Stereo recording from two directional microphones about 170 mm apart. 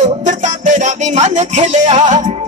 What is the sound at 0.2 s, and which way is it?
Music, 45° right (ahead or behind).